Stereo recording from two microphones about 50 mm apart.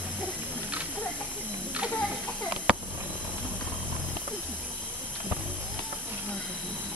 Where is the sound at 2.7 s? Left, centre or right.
Centre.